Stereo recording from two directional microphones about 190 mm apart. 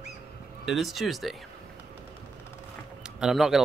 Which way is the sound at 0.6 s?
Centre (ahead or behind).